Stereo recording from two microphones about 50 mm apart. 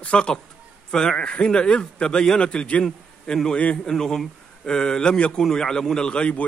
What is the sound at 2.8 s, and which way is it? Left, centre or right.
A man's voice, centre.